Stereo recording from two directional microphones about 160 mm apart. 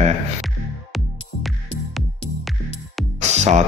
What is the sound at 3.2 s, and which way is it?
Music, 45° right (ahead or behind).